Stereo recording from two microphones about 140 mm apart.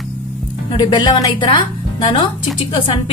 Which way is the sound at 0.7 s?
35° left (ahead or behind).